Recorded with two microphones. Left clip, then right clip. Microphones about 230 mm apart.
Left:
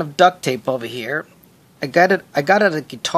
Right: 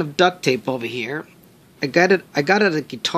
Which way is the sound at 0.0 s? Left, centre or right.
Centre.